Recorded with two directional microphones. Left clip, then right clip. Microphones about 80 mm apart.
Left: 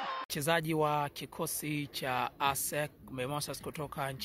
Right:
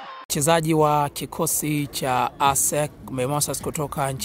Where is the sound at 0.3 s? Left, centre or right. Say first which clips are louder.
Right 13 dB; centre.